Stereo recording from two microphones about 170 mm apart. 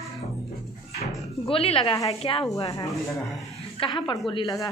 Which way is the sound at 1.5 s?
35° left (ahead or behind).